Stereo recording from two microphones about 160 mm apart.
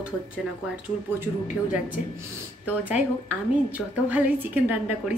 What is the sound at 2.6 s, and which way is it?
A woman's voice, 10° right (ahead or behind).